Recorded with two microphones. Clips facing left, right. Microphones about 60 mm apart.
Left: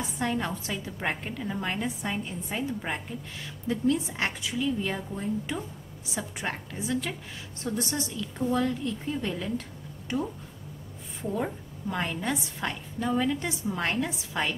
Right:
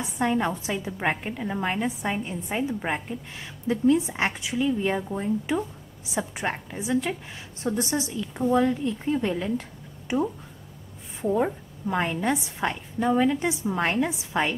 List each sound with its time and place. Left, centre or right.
0.2 s a woman's voice: centre